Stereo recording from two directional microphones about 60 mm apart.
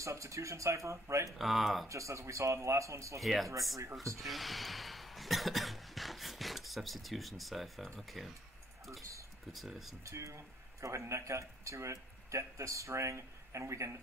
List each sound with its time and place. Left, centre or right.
0.0 s speech: right
1.4 s speech: centre
1.9 s speech: right
3.2 s speech: centre
9.5 s speech: centre
10.0 s speech: right